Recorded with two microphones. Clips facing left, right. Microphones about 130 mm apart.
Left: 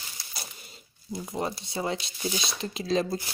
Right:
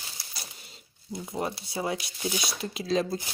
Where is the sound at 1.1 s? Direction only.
Centre (ahead or behind).